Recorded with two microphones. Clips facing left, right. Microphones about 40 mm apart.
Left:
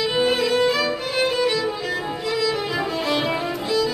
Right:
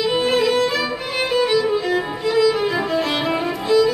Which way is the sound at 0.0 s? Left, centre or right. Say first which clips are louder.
Right 2 dB; centre.